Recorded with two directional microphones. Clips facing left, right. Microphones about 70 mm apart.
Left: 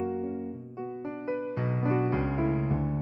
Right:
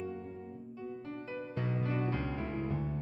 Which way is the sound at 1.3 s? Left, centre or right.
Left.